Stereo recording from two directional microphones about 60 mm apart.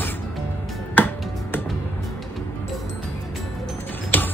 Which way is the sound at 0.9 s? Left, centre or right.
Left.